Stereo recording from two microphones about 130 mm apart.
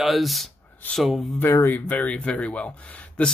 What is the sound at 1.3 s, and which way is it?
Speech, 15° left (ahead or behind).